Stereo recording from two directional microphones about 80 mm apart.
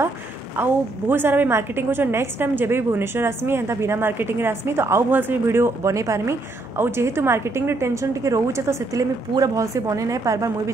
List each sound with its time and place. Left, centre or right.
0.6 s a woman's voice: right